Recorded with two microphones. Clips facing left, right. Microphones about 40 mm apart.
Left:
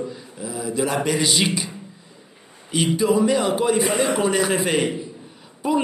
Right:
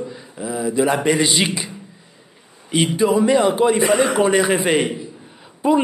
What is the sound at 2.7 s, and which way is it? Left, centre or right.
A man's voice, centre.